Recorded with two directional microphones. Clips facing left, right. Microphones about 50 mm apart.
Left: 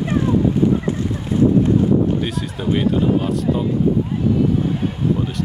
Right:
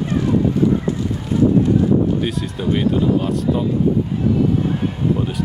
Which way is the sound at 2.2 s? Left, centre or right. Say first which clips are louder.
Right 1 dB; centre.